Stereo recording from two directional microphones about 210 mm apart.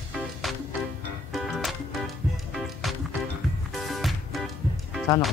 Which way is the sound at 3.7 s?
Centre (ahead or behind).